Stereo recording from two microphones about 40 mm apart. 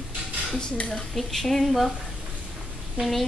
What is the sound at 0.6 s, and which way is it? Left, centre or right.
Speech, left.